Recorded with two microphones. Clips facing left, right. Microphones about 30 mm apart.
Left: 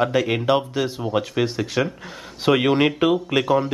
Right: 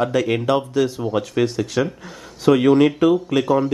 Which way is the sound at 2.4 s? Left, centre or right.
Left.